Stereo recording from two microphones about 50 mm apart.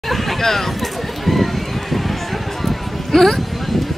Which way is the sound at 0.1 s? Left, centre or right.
Centre.